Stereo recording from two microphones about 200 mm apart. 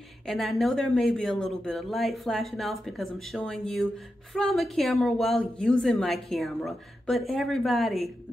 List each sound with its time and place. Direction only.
0.3 s speech: centre (ahead or behind)